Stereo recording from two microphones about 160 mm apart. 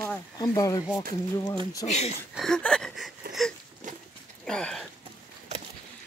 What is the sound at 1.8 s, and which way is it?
Speech, 45° left (ahead or behind).